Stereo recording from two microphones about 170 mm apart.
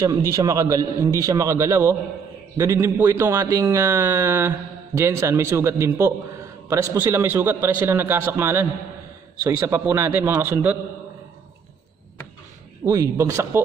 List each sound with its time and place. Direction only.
0.0 s a man's voice: 20° right (ahead or behind)
12.8 s a man's voice: 15° right (ahead or behind)